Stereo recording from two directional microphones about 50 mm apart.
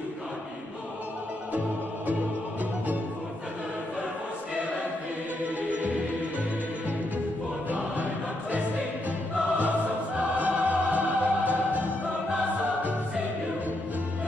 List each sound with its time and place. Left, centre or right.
5.6 s music: right
7.7 s choir: right
9.3 s music: right